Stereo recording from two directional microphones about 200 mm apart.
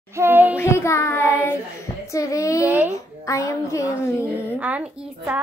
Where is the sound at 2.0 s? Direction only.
15° left (ahead or behind).